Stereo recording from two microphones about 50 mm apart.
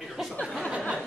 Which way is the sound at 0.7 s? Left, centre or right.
Right.